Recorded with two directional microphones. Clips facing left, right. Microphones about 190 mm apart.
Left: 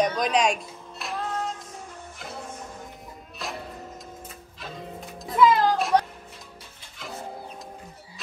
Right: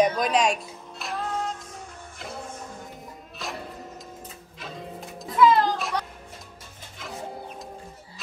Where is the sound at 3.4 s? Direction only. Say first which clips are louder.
Even; centre (ahead or behind).